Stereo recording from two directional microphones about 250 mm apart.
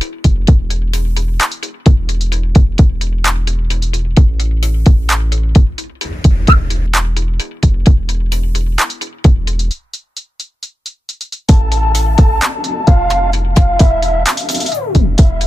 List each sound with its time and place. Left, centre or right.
1.4 s music: centre